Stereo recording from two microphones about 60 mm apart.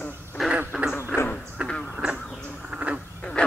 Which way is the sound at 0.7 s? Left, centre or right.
Centre.